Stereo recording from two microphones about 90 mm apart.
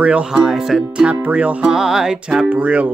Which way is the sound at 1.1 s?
15° right (ahead or behind).